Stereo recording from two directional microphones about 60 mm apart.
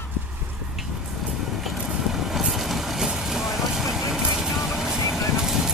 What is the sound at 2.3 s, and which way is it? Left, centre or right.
Vehicle, centre.